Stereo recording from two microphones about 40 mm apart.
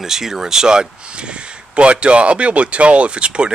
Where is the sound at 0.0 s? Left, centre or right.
Centre.